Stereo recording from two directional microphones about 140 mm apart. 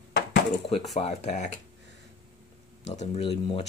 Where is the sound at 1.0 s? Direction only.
55° left (ahead or behind).